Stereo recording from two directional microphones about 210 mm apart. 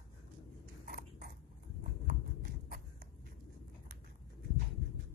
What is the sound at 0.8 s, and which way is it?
Biting, 45° right (ahead or behind).